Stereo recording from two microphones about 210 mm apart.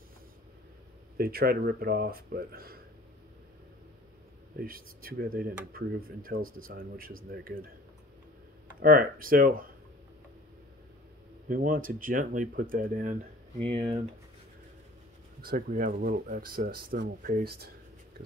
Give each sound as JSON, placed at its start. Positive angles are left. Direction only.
{"t": 1.1, "sound": "speech", "side_deg": -45}
{"t": 4.6, "sound": "speech", "side_deg": -45}
{"t": 8.7, "sound": "speech", "side_deg": -40}
{"t": 11.4, "sound": "speech", "side_deg": -40}
{"t": 13.6, "sound": "speech", "side_deg": -25}
{"t": 15.4, "sound": "speech", "side_deg": -40}